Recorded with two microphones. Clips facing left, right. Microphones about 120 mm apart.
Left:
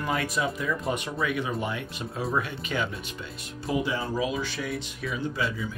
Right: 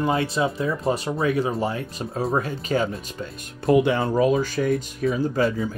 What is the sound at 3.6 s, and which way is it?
Speech, 65° right (ahead or behind).